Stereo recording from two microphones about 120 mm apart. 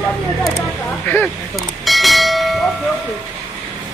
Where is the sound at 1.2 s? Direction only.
Centre (ahead or behind).